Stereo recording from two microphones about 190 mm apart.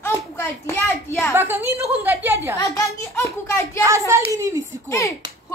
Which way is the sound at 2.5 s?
15° left (ahead or behind).